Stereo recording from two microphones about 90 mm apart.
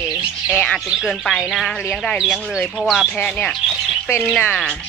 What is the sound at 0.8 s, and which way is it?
Speech, centre (ahead or behind).